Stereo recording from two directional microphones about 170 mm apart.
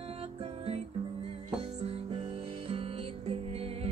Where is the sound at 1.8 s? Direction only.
35° right (ahead or behind).